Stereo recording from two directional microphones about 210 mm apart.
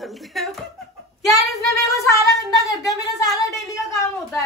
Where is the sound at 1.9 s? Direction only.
15° left (ahead or behind).